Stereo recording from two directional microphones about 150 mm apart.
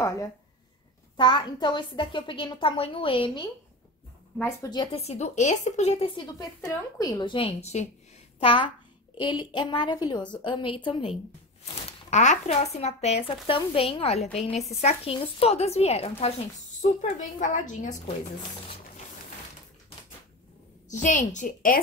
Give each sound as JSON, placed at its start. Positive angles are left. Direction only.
{"t": 0.0, "sound": "a woman's voice", "side_deg": 20}
{"t": 4.9, "sound": "speech", "side_deg": 45}
{"t": 6.6, "sound": "a woman's voice", "side_deg": 25}
{"t": 8.4, "sound": "a child's voice", "side_deg": 35}
{"t": 11.6, "sound": "speech", "side_deg": 50}
{"t": 17.0, "sound": "a woman's voice", "side_deg": 55}
{"t": 20.9, "sound": "a woman's voice", "side_deg": 55}